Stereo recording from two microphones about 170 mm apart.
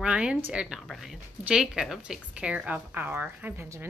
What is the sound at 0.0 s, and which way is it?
A woman's voice, 5° right (ahead or behind).